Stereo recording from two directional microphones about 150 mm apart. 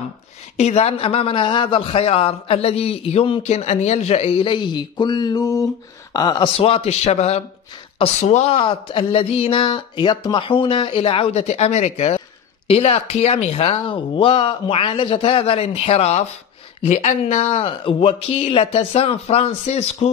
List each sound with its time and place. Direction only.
0.6 s a man's voice: 45° left (ahead or behind)
8.5 s a man's voice: 35° left (ahead or behind)